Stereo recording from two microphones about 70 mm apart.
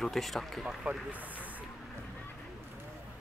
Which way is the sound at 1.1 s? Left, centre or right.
Right.